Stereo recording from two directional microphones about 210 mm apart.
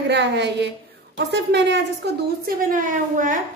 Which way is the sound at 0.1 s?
55° right (ahead or behind).